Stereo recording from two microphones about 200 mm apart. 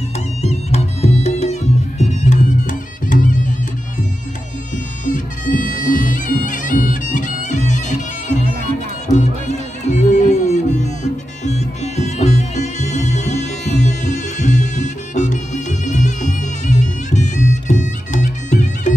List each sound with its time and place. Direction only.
0.4 s music: 35° left (ahead or behind)
5.0 s bagpipes: 40° left (ahead or behind)
9.0 s music: 35° left (ahead or behind)